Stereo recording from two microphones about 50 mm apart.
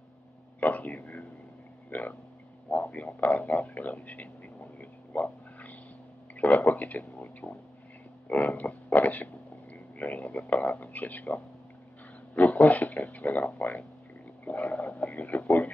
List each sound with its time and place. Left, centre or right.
0.6 s speech: left
5.1 s a sound: left
6.6 s speech: left